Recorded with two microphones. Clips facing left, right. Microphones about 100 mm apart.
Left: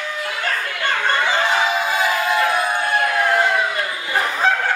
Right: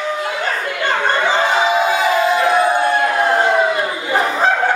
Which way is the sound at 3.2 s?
30° right (ahead or behind).